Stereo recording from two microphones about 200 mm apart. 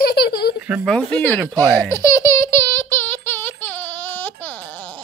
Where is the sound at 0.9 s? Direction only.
5° left (ahead or behind).